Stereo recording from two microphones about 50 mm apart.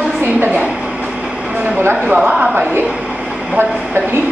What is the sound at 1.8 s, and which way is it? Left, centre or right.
Speech, right.